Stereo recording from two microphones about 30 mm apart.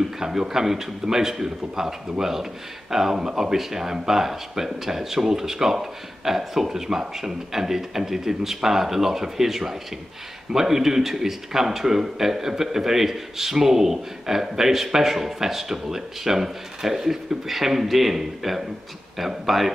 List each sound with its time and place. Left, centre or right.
0.2 s speech: centre